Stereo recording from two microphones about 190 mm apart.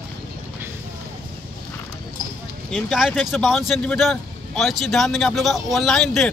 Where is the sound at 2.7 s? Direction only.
Centre (ahead or behind).